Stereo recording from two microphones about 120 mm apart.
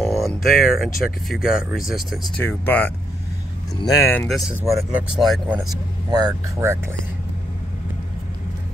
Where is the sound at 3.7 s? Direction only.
35° left (ahead or behind).